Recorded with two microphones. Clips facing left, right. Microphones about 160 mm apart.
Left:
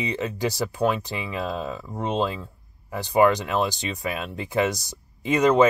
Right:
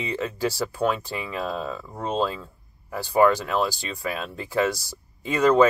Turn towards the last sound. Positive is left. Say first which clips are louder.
# even
turn(degrees=20)  # may be behind; listen again after turning